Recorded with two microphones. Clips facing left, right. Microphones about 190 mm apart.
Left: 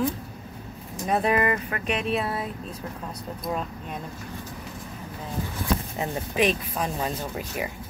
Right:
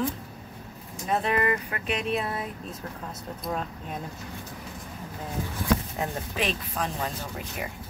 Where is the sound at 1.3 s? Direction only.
30° left (ahead or behind).